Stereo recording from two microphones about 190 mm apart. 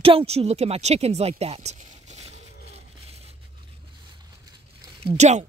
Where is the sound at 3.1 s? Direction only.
30° right (ahead or behind).